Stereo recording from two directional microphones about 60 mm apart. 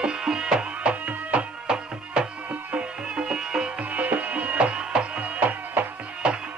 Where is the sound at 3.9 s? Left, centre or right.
Right.